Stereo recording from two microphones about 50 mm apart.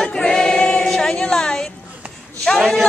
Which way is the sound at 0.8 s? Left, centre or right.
Centre.